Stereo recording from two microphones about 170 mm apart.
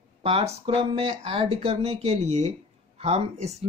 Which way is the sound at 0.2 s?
35° right (ahead or behind).